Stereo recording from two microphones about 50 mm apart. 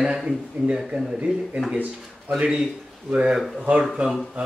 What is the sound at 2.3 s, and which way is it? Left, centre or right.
Speech, right.